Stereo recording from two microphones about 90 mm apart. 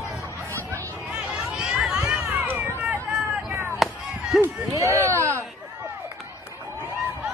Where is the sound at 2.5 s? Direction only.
30° right (ahead or behind).